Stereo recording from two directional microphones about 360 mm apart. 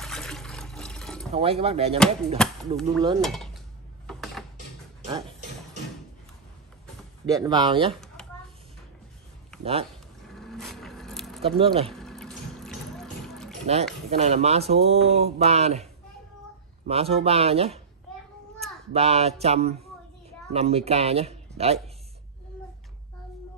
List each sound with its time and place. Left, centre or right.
0.0 s toilet flush: centre
1.3 s speech: centre
2.0 s chop: centre
3.2 s cutlery: centre
4.1 s mechanisms: centre
7.2 s speech: centre
7.9 s a sound: centre
9.6 s speech: centre
10.3 s vehicle: centre
11.4 s speech: centre
11.9 s water: centre
14.1 s speech: centre
18.9 s speech: centre